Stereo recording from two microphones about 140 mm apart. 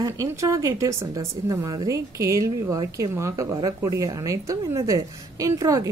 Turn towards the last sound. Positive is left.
turn(degrees=-25)  # may be behind; listen again after turning